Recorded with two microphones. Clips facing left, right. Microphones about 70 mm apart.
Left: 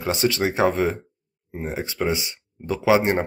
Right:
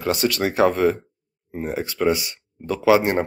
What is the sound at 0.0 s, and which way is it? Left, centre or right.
Speech, centre.